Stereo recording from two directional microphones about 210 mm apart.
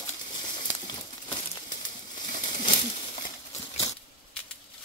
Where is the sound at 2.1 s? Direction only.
40° left (ahead or behind).